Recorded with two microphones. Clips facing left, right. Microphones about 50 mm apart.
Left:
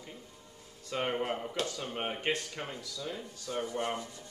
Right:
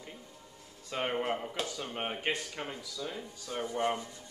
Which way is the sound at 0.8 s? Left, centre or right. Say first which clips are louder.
Even; centre.